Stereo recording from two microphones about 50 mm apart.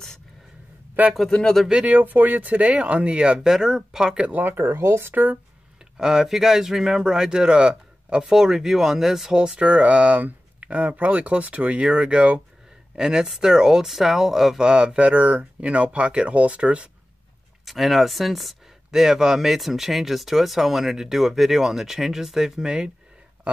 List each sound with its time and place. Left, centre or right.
1.0 s speech: right
1.3 s speech: centre
1.9 s speech: right; by 4.2 s centre
4.2 s speech: right
4.6 s speech: right
5.9 s speech: centre
9.6 s speech: right
12.9 s speech: centre
17.6 s speech: centre